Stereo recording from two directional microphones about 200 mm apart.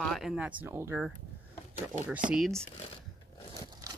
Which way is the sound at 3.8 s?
15° right (ahead or behind).